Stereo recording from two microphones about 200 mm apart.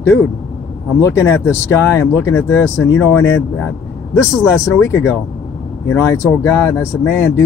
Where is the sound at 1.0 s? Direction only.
15° left (ahead or behind).